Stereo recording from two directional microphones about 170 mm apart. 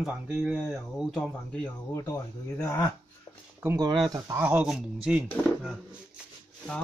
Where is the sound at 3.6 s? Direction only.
15° right (ahead or behind); by 5.8 s centre (ahead or behind).